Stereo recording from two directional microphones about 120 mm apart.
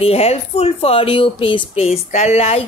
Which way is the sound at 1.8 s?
65° left (ahead or behind).